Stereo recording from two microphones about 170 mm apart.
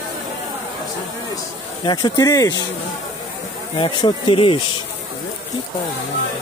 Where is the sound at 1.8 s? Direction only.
25° left (ahead or behind).